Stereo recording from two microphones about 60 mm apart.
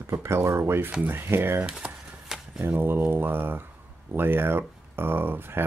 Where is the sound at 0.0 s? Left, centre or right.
Right.